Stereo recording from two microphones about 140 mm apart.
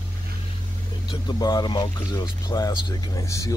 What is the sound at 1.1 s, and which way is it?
Speech, 30° left (ahead or behind).